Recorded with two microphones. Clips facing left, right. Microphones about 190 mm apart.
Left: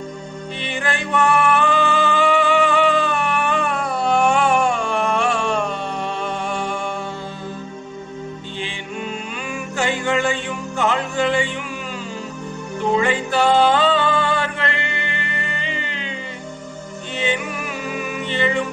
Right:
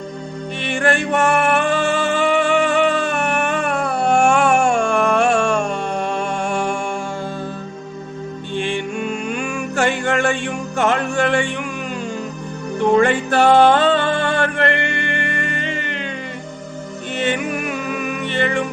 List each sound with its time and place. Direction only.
0.7 s music: 50° right (ahead or behind)
8.5 s music: 50° right (ahead or behind)
12.9 s music: 55° right (ahead or behind)
17.2 s music: 55° right (ahead or behind)